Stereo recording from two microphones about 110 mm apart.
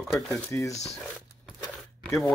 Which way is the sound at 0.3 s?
30° left (ahead or behind).